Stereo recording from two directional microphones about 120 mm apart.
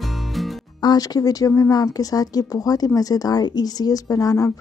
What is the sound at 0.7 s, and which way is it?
Speech, 35° left (ahead or behind).